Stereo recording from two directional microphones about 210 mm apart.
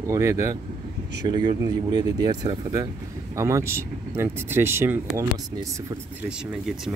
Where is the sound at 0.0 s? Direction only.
15° right (ahead or behind).